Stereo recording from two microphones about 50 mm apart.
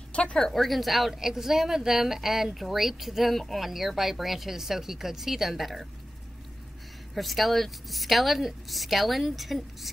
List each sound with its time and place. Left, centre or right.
0.1 s a sound: left
0.4 s a woman's voice: centre
7.2 s a woman's voice: centre